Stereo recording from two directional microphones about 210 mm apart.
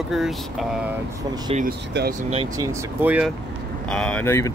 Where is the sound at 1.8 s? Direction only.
50° right (ahead or behind).